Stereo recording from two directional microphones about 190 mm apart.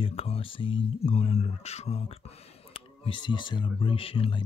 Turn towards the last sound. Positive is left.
turn(degrees=30)  # may be behind; listen again after turning